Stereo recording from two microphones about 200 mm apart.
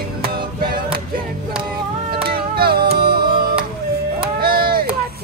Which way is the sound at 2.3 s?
50° right (ahead or behind).